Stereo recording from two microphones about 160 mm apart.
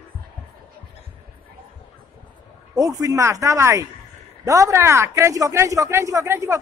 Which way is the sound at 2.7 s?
20° right (ahead or behind).